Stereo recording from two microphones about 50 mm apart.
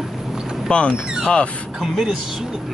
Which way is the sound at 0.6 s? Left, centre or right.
Centre.